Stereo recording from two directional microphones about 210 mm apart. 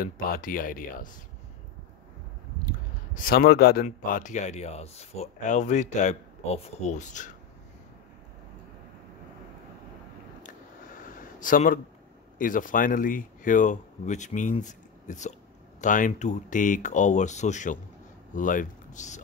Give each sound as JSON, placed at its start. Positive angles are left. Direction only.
{"t": 0.0, "sound": "speech", "side_deg": 45}
{"t": 3.2, "sound": "speech", "side_deg": 45}
{"t": 3.8, "sound": "speech", "side_deg": 35}
{"t": 11.1, "sound": "a sound", "side_deg": 40}
{"t": 12.4, "sound": "speech", "side_deg": 40}